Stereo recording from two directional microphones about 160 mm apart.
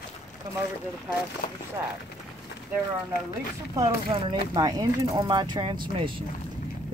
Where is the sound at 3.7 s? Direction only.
25° right (ahead or behind).